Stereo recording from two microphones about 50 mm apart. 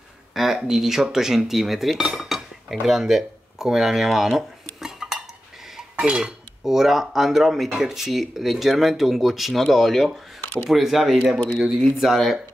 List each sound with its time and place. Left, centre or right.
0.3 s speech: centre
5.9 s dishes: centre
11.5 s speech: centre
12.0 s dishes: centre